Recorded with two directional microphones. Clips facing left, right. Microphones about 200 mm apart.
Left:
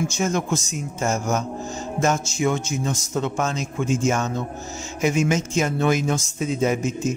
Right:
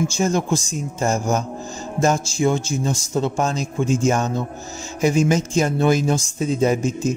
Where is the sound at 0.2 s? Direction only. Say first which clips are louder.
Right 3 dB; 30° right (ahead or behind).